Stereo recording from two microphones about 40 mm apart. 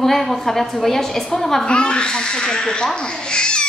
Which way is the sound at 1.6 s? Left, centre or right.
Left.